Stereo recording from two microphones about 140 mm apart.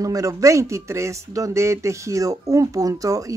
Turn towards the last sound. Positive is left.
turn(degrees=-25)  # may be behind; listen again after turning